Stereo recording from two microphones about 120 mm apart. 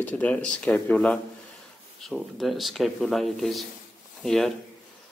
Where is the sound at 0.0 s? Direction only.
10° left (ahead or behind).